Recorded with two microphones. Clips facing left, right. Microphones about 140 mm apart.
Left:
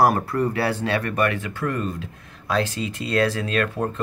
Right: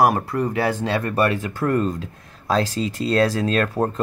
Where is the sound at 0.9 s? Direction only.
30° right (ahead or behind).